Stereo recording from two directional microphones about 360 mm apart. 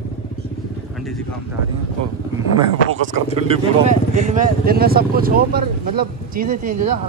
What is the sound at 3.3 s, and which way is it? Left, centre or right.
Speech, centre.